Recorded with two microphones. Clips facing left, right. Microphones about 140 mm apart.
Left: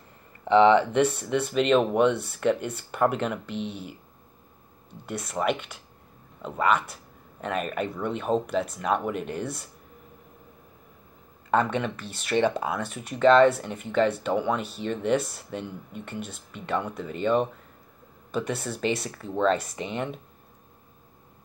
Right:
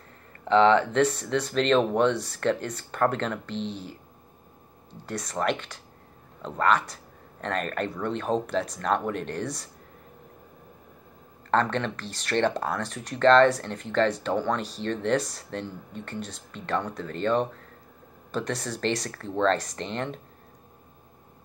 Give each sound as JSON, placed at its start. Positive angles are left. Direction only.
{"t": 0.5, "sound": "speech", "side_deg": 10}
{"t": 3.5, "sound": "speech", "side_deg": 60}
{"t": 5.0, "sound": "speech", "side_deg": 5}
{"t": 11.5, "sound": "speech", "side_deg": 5}